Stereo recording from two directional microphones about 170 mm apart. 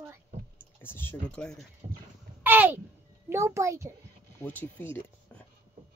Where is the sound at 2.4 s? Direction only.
10° right (ahead or behind).